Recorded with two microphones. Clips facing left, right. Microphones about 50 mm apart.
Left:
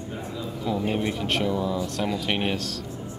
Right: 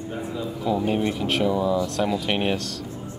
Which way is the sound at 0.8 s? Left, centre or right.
Centre.